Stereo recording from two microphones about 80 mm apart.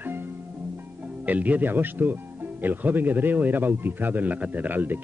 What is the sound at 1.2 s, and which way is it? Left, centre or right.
A man's voice, centre.